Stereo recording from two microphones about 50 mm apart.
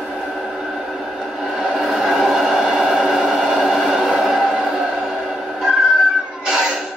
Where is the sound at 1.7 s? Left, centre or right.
Centre.